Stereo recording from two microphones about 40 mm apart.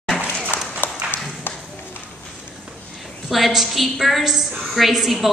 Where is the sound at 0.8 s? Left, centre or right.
Left.